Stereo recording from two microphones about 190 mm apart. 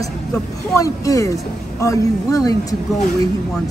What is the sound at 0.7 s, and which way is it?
A woman's voice, 15° left (ahead or behind).